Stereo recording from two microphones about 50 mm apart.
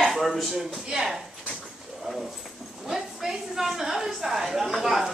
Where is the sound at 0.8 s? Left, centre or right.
Centre.